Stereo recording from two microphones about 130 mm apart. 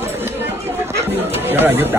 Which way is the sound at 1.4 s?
15° right (ahead or behind).